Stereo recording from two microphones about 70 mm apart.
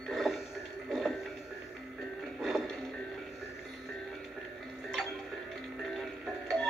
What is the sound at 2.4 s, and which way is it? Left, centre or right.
Music, centre.